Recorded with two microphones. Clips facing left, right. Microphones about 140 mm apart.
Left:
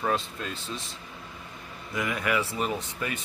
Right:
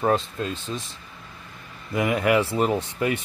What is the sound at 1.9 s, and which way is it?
Speech, 55° right (ahead or behind).